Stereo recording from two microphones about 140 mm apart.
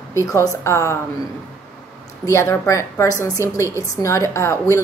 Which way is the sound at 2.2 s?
20° left (ahead or behind).